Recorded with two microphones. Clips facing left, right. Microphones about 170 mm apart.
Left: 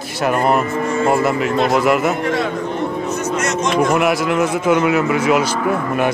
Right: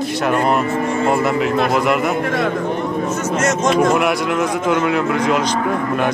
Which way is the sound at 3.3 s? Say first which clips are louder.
Right 3 dB; 45° right (ahead or behind).